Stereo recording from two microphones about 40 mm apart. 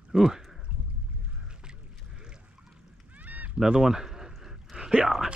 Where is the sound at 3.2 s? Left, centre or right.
Right.